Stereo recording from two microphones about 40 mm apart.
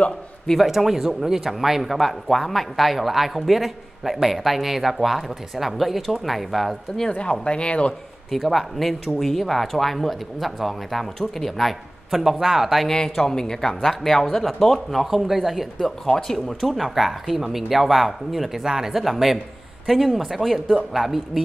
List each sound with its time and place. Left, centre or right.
0.6 s speech: centre
7.1 s speech: left
8.3 s speech: centre
12.8 s speech: centre